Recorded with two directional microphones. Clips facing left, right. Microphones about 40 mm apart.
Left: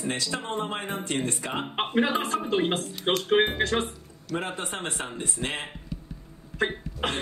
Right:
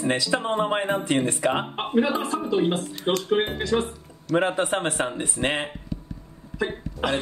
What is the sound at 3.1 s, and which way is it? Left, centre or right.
Speech, left.